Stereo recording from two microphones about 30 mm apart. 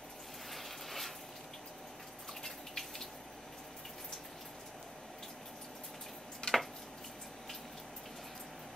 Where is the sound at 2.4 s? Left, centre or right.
Centre.